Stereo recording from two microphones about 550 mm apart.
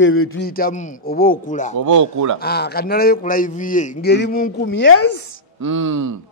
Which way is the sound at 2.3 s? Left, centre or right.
Centre.